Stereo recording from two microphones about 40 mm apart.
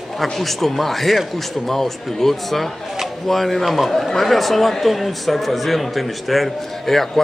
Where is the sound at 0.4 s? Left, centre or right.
Centre.